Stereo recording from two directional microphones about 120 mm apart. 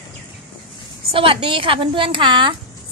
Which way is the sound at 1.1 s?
45° right (ahead or behind).